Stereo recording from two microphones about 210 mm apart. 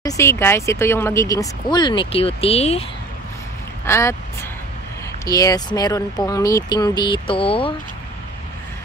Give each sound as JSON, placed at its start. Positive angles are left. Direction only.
{"t": 0.0, "sound": "speech", "side_deg": 10}
{"t": 3.8, "sound": "speech", "side_deg": 15}